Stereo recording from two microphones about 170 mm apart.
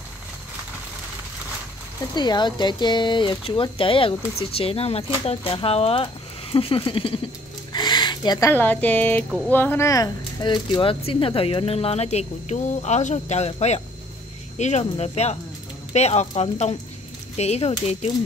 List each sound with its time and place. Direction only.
2.1 s speech: 25° left (ahead or behind)